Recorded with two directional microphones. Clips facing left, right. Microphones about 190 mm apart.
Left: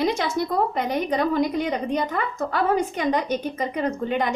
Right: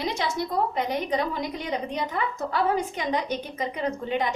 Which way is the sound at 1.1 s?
50° left (ahead or behind).